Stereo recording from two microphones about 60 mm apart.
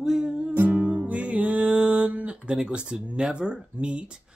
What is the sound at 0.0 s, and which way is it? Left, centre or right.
Music, centre.